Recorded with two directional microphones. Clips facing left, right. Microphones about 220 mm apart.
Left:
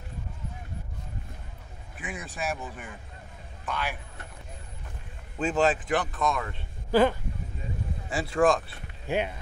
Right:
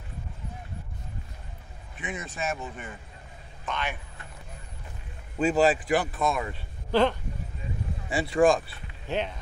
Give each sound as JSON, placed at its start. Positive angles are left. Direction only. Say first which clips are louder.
{"t": 2.0, "sound": "speech", "louder": "right 1 dB", "side_deg": 0}
{"t": 5.4, "sound": "speech", "louder": "right 3 dB", "side_deg": -5}
{"t": 6.9, "sound": "speech", "louder": "left 1 dB", "side_deg": 5}
{"t": 8.1, "sound": "speech", "louder": "right 2 dB", "side_deg": -5}
{"t": 9.0, "sound": "speech", "louder": "left 2 dB", "side_deg": 10}